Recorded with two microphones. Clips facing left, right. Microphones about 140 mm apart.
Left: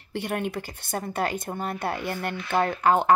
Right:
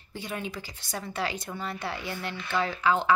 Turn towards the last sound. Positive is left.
turn(degrees=55)  # may be behind; listen again after turning